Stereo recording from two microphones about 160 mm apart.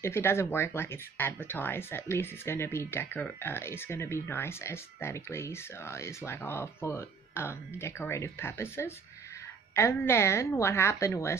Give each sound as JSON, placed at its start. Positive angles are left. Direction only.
{"t": 0.0, "sound": "speech", "side_deg": 15}